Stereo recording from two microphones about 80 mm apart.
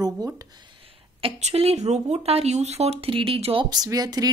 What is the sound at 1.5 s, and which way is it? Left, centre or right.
Speech, right.